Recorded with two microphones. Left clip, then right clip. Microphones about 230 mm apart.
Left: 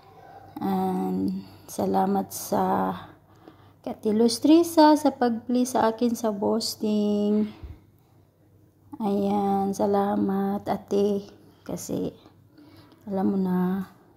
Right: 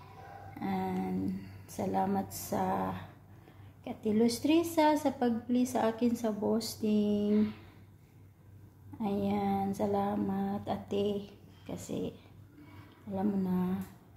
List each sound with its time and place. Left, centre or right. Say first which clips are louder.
0.6 s a sound: left 9 dB; left
3.8 s a woman's voice: left 7 dB; left
8.9 s a woman's voice: left 8 dB; left